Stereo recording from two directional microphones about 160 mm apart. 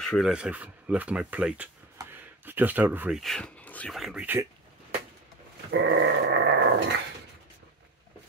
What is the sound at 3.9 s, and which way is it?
Speech, centre (ahead or behind).